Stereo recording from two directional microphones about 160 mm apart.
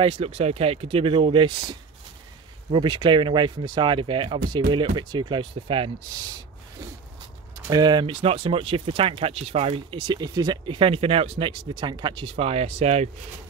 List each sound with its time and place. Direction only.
0.0 s speech: 35° right (ahead or behind)
7.6 s speech: 25° right (ahead or behind); by 13.1 s 45° right (ahead or behind)